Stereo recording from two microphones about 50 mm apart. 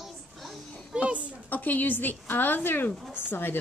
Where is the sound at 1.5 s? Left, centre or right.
Left.